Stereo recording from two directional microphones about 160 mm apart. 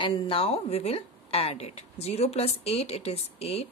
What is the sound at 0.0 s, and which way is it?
A woman's voice, 35° left (ahead or behind).